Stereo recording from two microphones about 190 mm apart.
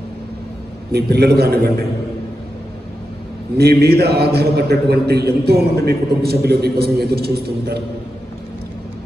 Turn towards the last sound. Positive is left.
turn(degrees=-55)  # may be behind; listen again after turning